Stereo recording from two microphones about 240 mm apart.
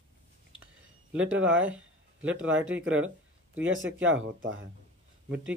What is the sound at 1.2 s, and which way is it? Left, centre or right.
Speech, right.